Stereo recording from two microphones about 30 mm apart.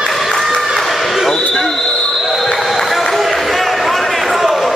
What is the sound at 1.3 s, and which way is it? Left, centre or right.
Basketball bounce, centre.